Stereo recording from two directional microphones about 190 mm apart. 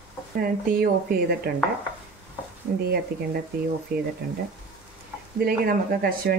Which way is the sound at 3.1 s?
50° right (ahead or behind).